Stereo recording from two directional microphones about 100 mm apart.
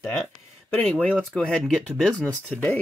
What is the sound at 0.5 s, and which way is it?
Speech, 15° left (ahead or behind).